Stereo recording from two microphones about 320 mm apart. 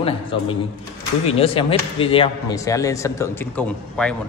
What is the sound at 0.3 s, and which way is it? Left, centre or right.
Speech, centre.